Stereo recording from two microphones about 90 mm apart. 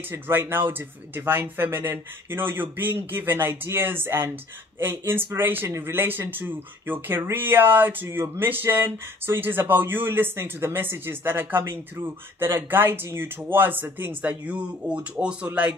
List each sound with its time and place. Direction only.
0.1 s speech: 25° right (ahead or behind)